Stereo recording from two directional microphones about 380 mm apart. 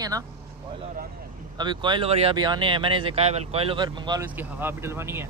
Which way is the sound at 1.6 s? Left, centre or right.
Centre.